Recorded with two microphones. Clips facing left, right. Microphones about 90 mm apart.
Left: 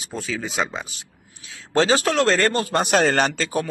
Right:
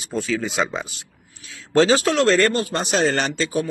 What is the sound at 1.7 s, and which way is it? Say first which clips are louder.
Speech: right 2 dB; 35° left (ahead or behind).